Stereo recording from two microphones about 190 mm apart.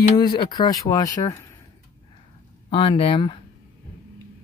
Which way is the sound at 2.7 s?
30° left (ahead or behind).